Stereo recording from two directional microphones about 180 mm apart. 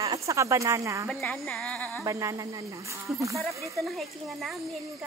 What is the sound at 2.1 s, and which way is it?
Speech, 15° right (ahead or behind).